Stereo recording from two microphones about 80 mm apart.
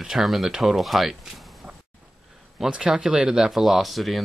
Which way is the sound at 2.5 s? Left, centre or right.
Centre.